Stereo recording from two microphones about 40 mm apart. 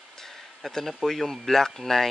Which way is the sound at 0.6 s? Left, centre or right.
Centre.